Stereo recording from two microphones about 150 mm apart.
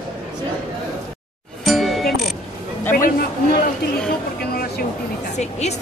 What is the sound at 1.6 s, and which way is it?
Music, centre (ahead or behind).